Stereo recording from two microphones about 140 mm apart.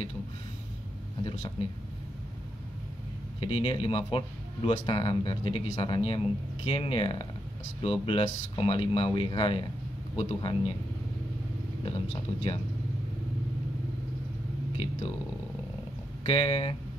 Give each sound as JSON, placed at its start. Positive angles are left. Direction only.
{"t": 1.2, "sound": "speech", "side_deg": 35}
{"t": 3.3, "sound": "speech", "side_deg": 40}
{"t": 11.8, "sound": "speech", "side_deg": 40}
{"t": 16.3, "sound": "speech", "side_deg": 40}